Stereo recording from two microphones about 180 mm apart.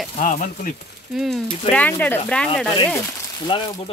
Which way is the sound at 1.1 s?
Centre (ahead or behind).